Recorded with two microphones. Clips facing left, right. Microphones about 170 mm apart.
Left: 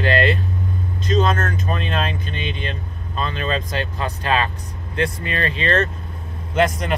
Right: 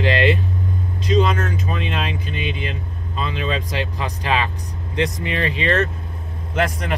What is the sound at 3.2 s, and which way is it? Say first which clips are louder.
Speech: even; 10° right (ahead or behind).